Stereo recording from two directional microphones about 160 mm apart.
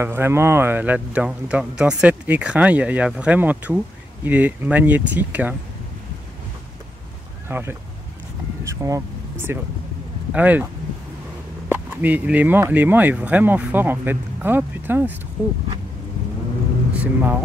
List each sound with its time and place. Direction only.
0.0 s speech: 15° right (ahead or behind)
7.4 s speech: 15° right (ahead or behind)
11.7 s speech: 10° right (ahead or behind)
16.9 s speech: 10° right (ahead or behind)